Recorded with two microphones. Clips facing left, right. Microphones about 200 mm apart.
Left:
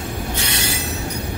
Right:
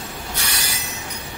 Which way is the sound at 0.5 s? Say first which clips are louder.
Left 6 dB; 25° left (ahead or behind).